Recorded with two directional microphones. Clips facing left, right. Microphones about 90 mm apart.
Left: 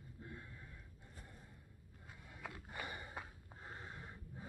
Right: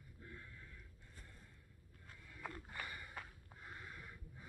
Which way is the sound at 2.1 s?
20° left (ahead or behind).